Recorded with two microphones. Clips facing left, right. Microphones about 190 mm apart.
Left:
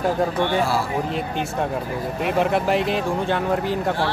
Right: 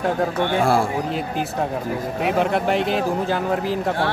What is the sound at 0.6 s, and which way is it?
Speech, 50° right (ahead or behind).